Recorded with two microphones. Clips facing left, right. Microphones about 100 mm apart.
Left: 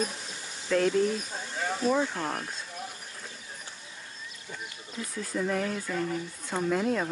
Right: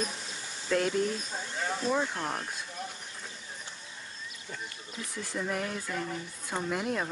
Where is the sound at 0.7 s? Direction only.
5° right (ahead or behind).